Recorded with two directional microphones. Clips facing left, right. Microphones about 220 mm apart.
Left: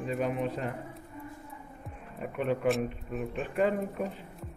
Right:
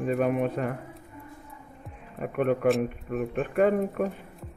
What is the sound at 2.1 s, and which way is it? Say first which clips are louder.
Speech: right 5 dB; 55° right (ahead or behind).